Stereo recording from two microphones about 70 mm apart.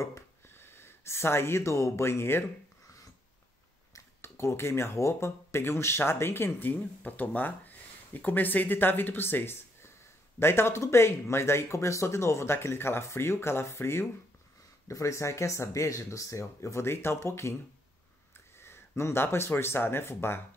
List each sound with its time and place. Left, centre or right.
0.0 s a sound: left
4.2 s speech: left
14.9 s speech: left
18.6 s speech: left